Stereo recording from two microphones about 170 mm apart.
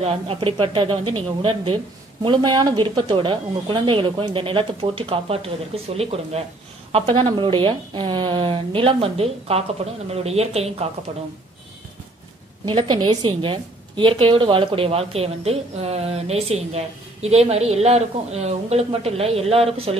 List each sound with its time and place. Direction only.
0.0 s a woman's voice: 35° right (ahead or behind)
12.6 s a woman's voice: 30° right (ahead or behind)